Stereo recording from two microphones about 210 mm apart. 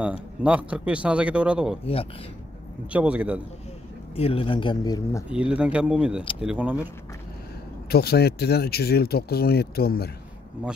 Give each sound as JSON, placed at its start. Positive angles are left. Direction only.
{"t": 0.0, "sound": "speech", "side_deg": -5}
{"t": 2.9, "sound": "a man's voice", "side_deg": -5}
{"t": 4.1, "sound": "speech", "side_deg": 25}
{"t": 5.3, "sound": "a man's voice", "side_deg": -5}
{"t": 7.9, "sound": "speech", "side_deg": 50}